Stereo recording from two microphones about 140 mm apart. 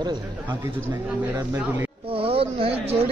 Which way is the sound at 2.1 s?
40° right (ahead or behind).